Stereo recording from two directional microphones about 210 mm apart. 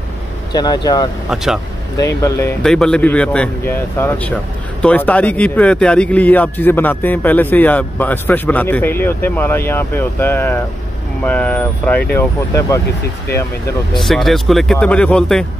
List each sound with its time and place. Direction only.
0.5 s speech: 20° left (ahead or behind)
1.3 s speech: centre (ahead or behind)
2.0 s speech: 15° left (ahead or behind)
2.6 s speech: 5° left (ahead or behind)
13.9 s speech: centre (ahead or behind)